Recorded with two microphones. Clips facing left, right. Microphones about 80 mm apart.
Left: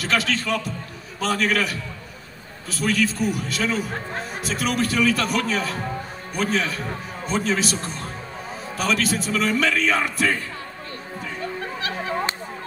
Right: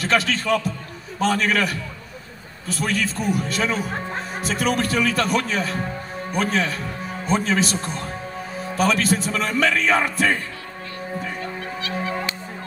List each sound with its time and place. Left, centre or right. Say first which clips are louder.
0.0 s a man's voice: right 2 dB; right
3.9 s speech: right 2 dB; centre
4.5 s a man's voice: right 2 dB; right
11.8 s music: even; left